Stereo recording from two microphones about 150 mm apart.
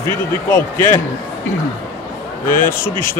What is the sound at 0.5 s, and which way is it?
Speech, 15° left (ahead or behind).